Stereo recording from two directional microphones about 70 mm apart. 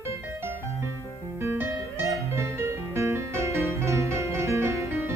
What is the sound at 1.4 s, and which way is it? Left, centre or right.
Music, right.